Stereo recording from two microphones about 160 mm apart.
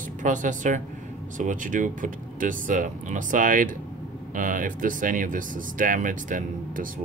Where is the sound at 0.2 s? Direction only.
50° right (ahead or behind).